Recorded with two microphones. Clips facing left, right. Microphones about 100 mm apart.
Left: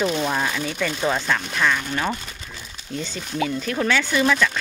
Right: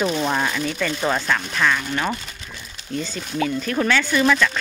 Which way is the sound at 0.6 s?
15° left (ahead or behind).